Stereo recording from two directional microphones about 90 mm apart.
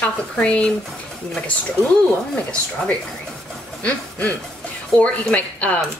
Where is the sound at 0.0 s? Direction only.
15° left (ahead or behind).